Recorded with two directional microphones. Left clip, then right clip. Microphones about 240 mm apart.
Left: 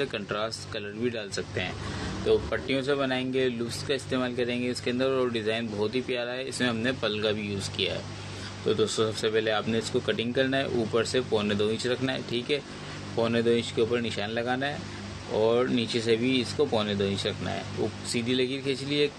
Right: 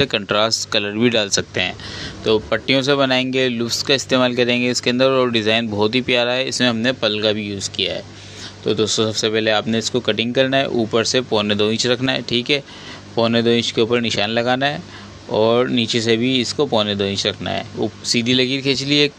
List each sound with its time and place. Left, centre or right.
0.0 s speech: right